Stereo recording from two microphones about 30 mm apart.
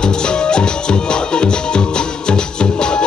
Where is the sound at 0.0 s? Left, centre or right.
Left.